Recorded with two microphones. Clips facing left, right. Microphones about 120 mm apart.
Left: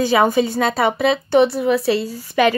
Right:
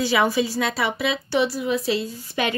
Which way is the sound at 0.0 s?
45° left (ahead or behind).